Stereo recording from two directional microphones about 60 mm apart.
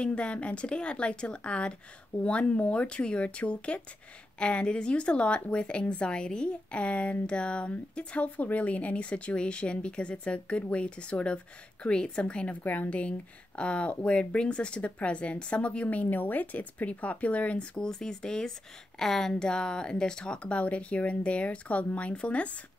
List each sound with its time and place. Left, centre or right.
0.0 s a woman's voice: centre